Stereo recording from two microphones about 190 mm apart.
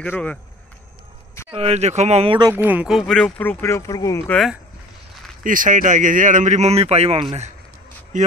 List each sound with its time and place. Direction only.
0.0 s speech: 10° left (ahead or behind)
1.5 s speech: 30° right (ahead or behind)
2.5 s speech: 10° right (ahead or behind); by 4.4 s 15° left (ahead or behind)
5.4 s speech: 45° right (ahead or behind)